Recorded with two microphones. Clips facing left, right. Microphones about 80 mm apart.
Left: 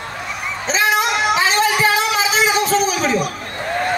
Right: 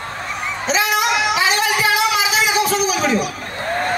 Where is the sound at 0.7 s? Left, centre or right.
Left.